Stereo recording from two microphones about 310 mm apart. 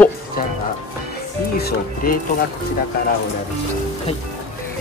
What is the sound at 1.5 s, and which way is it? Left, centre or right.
Speech, left.